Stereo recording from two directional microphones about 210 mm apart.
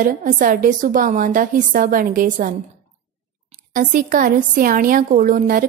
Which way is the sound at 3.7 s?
40° right (ahead or behind).